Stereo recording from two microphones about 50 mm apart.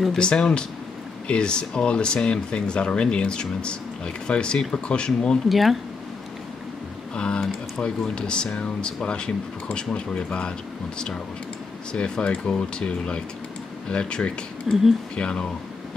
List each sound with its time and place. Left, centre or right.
0.2 s speech: centre
5.5 s speech: centre
7.2 s speech: centre
11.9 s speech: left
14.7 s speech: centre
15.1 s speech: centre